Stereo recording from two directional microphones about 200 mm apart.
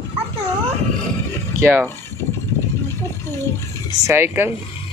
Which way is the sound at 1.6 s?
10° right (ahead or behind).